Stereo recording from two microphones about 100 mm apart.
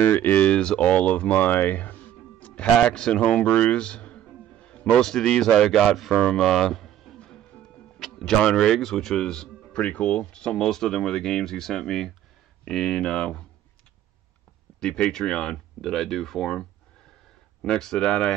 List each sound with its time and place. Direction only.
0.1 s a man's voice: 20° left (ahead or behind)
14.8 s speech: 10° left (ahead or behind)